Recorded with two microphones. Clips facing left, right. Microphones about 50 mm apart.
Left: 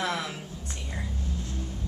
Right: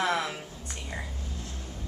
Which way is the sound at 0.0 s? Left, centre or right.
Right.